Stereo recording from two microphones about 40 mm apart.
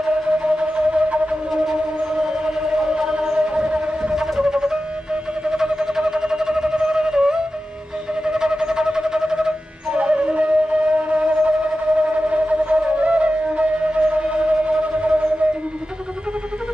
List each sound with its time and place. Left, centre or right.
0.0 s flute: right
1.6 s music: centre
4.1 s a sound: centre
9.9 s flute: right
11.2 s wind instrument: right